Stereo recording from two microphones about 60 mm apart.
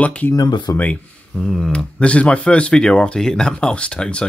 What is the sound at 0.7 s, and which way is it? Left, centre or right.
Speech, left.